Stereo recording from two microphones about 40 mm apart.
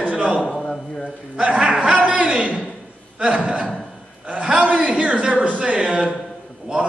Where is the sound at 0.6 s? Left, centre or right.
Left.